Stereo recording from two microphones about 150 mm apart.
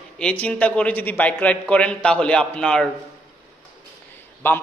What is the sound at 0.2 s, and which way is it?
A man's voice, 5° left (ahead or behind).